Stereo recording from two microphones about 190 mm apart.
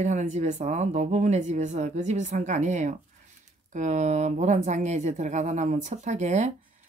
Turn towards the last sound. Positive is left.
turn(degrees=-40)  # may be behind; listen again after turning